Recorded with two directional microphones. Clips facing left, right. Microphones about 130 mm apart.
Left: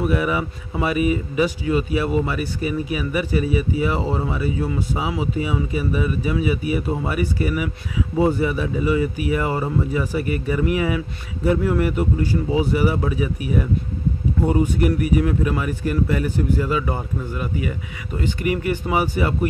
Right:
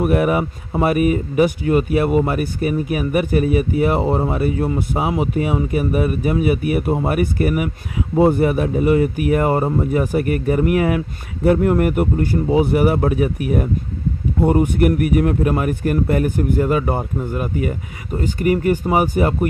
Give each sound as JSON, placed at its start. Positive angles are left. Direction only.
{"t": 0.0, "sound": "speech", "side_deg": -55}